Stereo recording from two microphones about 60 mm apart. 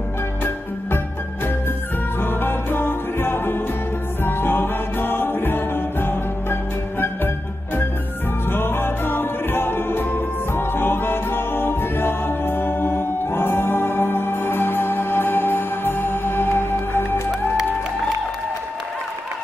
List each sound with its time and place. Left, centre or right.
2.1 s music: left
8.5 s music: left